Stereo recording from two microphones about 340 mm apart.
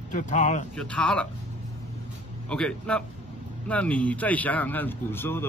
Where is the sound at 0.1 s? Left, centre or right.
Left.